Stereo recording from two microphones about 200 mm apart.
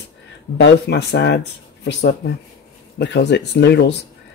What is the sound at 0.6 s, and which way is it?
Speech, 60° left (ahead or behind).